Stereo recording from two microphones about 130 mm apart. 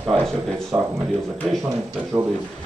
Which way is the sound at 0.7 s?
20° right (ahead or behind).